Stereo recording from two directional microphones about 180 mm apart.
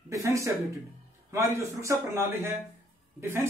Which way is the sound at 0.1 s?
15° right (ahead or behind).